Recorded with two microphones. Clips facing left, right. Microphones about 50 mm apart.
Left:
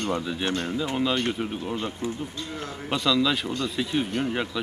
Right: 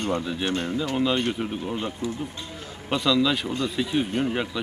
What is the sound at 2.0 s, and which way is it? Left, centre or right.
Speech, left.